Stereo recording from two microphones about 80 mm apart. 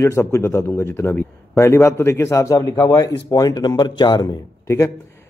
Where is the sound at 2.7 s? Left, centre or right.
Left.